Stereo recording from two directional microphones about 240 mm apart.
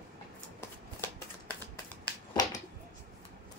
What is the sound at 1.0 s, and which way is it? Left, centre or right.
Shuffling cards, centre.